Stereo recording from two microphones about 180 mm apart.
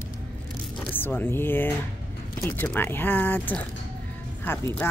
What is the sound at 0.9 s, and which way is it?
A woman's voice, 10° left (ahead or behind).